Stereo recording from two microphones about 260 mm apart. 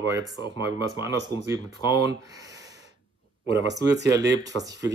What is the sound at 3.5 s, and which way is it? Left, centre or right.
Speech, centre.